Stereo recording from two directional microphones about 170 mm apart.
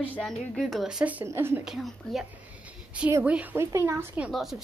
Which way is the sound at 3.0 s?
10° right (ahead or behind).